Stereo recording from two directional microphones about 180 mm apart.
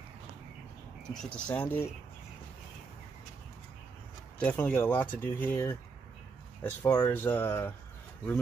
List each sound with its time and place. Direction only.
1.1 s speech: 10° left (ahead or behind)
4.4 s speech: 10° left (ahead or behind)